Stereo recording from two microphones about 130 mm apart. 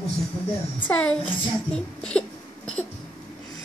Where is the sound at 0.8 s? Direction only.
10° left (ahead or behind).